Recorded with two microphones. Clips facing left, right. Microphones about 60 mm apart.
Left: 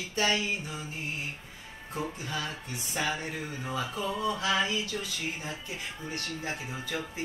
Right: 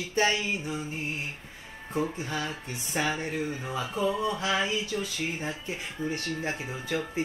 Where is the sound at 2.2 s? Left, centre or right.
Right.